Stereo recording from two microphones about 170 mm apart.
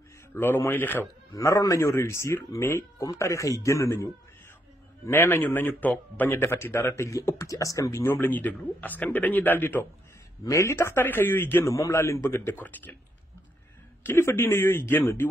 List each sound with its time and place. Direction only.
0.3 s a man's voice: 15° left (ahead or behind)
14.0 s a man's voice: 15° left (ahead or behind)